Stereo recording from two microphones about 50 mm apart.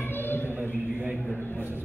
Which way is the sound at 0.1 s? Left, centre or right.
Left.